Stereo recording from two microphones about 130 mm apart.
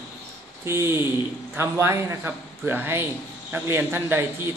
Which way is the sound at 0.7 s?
20° right (ahead or behind).